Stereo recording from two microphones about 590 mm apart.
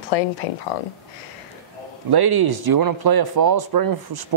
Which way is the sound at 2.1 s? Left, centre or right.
Right.